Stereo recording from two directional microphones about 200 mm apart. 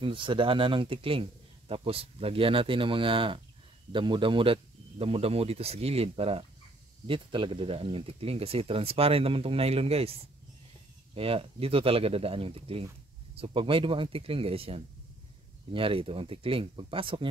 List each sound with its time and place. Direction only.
0.0 s a man's voice: 25° right (ahead or behind)
11.1 s a man's voice: 30° right (ahead or behind)